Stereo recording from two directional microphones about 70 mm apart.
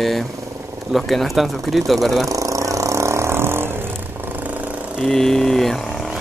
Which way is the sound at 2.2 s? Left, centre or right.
Right.